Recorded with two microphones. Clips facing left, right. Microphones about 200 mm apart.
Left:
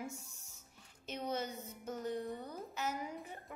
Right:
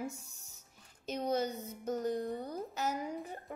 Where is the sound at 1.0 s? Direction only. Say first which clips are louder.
Right 6 dB; 40° right (ahead or behind).